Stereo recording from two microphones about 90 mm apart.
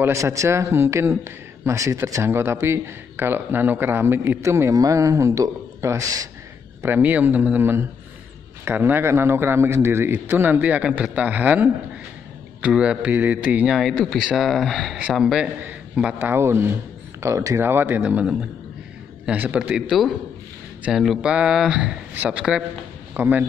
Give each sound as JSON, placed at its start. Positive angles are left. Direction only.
{"t": 0.1, "sound": "a man's voice", "side_deg": -35}
{"t": 6.8, "sound": "a man's voice", "side_deg": -20}
{"t": 13.7, "sound": "speech", "side_deg": 0}
{"t": 16.1, "sound": "a man's voice", "side_deg": -20}
{"t": 17.6, "sound": "a man's voice", "side_deg": -25}
{"t": 19.3, "sound": "a man's voice", "side_deg": -20}
{"t": 20.9, "sound": "speech", "side_deg": -5}
{"t": 23.1, "sound": "a man's voice", "side_deg": -20}